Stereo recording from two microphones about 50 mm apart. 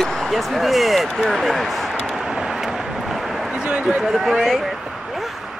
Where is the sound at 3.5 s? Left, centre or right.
Centre.